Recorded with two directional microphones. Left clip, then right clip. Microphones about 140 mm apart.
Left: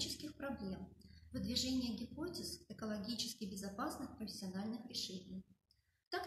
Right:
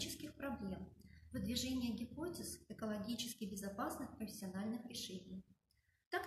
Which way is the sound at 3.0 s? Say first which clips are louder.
Left 2 dB; 15° right (ahead or behind).